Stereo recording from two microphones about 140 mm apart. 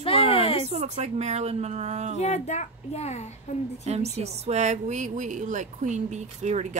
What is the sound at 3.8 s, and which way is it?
A woman's voice, 50° right (ahead or behind).